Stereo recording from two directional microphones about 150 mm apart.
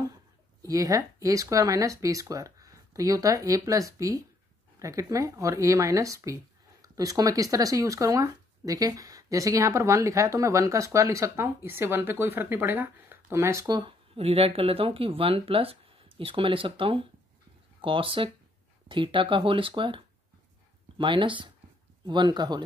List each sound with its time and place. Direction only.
0.6 s speech: 20° right (ahead or behind)
21.0 s speech: 35° right (ahead or behind)